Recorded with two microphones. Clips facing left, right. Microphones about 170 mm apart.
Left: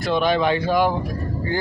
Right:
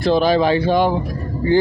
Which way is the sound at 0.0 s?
35° right (ahead or behind).